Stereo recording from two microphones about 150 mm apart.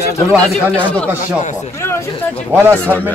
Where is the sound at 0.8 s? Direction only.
10° left (ahead or behind).